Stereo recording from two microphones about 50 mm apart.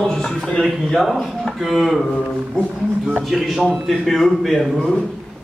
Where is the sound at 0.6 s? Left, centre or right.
Centre.